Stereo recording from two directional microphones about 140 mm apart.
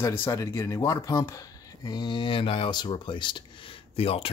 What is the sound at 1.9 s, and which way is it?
Speech, 35° left (ahead or behind).